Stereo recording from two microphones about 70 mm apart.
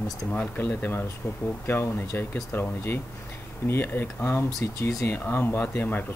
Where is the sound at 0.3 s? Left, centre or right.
Left.